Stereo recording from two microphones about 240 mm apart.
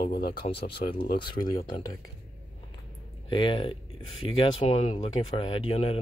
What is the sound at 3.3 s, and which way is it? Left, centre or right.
Speech, left.